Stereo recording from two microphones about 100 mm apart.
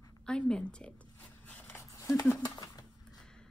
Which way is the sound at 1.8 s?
35° left (ahead or behind).